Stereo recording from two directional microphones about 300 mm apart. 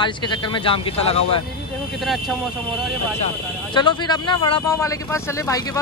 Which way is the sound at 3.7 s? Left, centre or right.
Centre.